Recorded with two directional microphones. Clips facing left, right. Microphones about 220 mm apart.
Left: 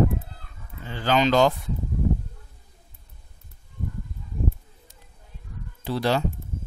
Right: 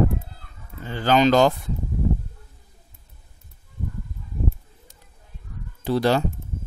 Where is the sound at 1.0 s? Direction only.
45° right (ahead or behind).